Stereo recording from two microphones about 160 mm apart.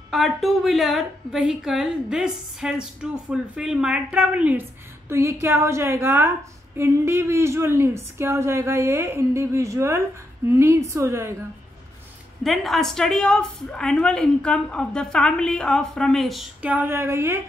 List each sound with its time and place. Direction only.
0.1 s a woman's voice: centre (ahead or behind); by 11.3 s 15° right (ahead or behind)
12.4 s a woman's voice: centre (ahead or behind); by 17.4 s 15° right (ahead or behind)